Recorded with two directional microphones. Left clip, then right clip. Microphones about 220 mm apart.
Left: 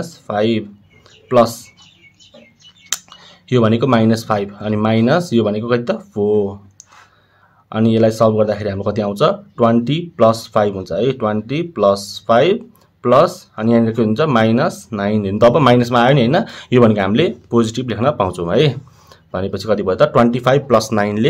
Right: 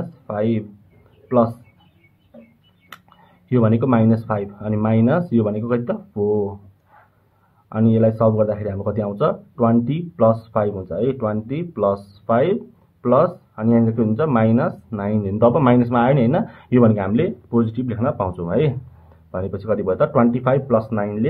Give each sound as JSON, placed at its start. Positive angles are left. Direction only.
{"t": 0.3, "sound": "speech", "side_deg": 25}
{"t": 2.9, "sound": "speech", "side_deg": 20}
{"t": 7.7, "sound": "speech", "side_deg": 25}